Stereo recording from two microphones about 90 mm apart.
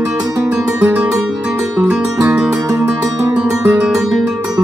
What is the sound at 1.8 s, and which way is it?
Music, 10° right (ahead or behind).